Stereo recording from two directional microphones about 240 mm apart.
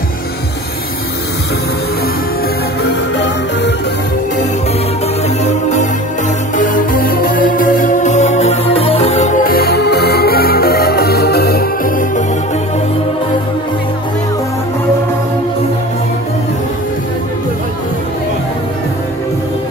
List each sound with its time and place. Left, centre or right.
5.4 s music: left